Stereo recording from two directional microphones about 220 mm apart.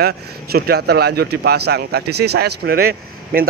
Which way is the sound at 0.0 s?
45° right (ahead or behind).